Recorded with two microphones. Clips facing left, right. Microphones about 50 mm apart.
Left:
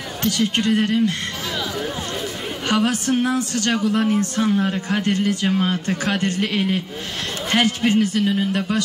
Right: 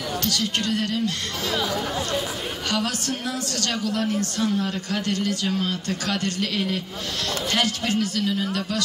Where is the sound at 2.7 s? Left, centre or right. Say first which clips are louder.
Left 8 dB; left.